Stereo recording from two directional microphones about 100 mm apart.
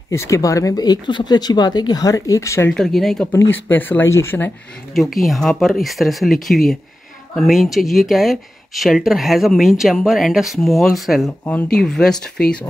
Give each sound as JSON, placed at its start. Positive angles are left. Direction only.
{"t": 0.1, "sound": "speech", "side_deg": 30}
{"t": 2.7, "sound": "speech", "side_deg": 5}
{"t": 3.3, "sound": "speech", "side_deg": 20}
{"t": 5.1, "sound": "speech", "side_deg": 0}
{"t": 11.4, "sound": "speech", "side_deg": 15}
{"t": 11.8, "sound": "speech", "side_deg": 5}